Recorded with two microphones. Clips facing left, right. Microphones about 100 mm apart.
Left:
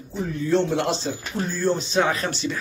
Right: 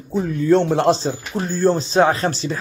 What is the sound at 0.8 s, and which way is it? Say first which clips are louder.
Speech: right 8 dB; 35° right (ahead or behind).